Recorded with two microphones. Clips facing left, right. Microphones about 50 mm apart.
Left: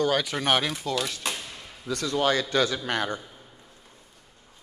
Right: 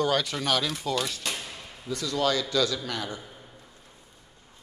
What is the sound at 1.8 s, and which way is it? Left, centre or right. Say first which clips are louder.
Speech: left 3 dB; left.